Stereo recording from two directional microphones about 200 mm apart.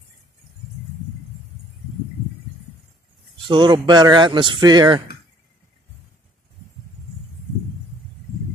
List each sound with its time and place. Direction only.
3.4 s speech: 25° right (ahead or behind)